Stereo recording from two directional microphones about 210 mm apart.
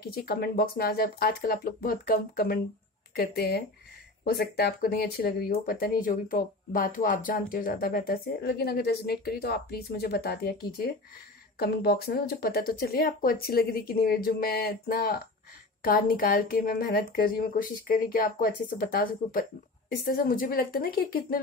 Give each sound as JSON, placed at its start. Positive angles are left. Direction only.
{"t": 0.0, "sound": "speech", "side_deg": 45}